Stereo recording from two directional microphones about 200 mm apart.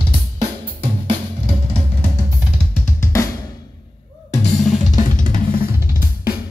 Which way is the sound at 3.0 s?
15° left (ahead or behind).